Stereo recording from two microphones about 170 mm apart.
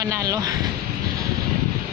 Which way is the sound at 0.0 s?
20° right (ahead or behind).